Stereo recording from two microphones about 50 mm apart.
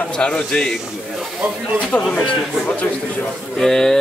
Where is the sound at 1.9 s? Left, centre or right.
Left.